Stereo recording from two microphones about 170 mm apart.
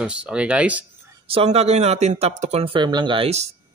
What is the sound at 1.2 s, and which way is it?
Speech, 35° right (ahead or behind).